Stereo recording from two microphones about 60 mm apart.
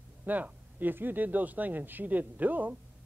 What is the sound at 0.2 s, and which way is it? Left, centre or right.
Speech, right.